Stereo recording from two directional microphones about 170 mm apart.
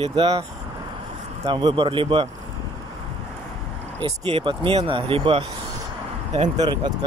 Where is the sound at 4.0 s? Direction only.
30° right (ahead or behind).